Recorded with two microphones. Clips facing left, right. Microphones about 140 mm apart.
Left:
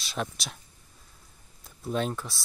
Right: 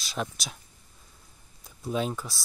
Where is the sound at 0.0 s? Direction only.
Centre (ahead or behind).